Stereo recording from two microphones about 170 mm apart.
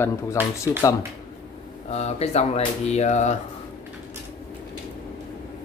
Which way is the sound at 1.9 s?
40° left (ahead or behind).